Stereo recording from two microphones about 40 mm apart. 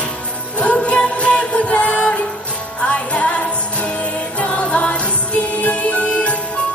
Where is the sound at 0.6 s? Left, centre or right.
Left.